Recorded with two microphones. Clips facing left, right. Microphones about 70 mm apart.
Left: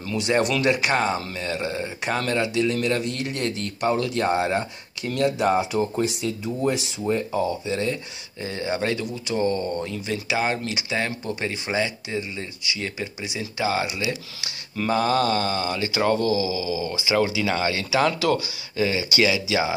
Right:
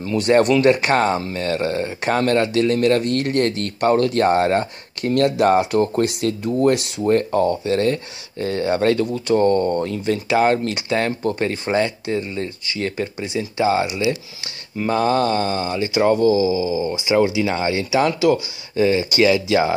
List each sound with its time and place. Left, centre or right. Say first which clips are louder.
0.1 s speech: right 7 dB; right
13.2 s speech: right 7 dB; centre
13.6 s speech: right 6 dB; right
14.9 s speech: right 3 dB; right
18.0 s speech: right 4 dB; centre
18.8 s speech: right 6 dB; right